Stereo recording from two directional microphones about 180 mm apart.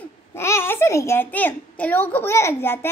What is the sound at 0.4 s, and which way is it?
A child's voice, 15° left (ahead or behind).